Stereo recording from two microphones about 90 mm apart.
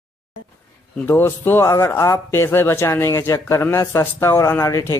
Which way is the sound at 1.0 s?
25° left (ahead or behind).